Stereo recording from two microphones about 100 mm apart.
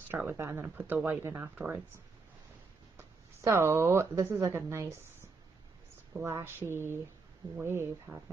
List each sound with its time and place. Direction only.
0.1 s speech: 20° right (ahead or behind)
3.0 s speech: 25° right (ahead or behind)
6.1 s speech: 25° right (ahead or behind)